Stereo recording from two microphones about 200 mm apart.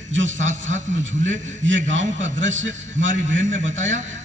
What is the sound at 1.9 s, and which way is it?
A man's voice, 70° right (ahead or behind).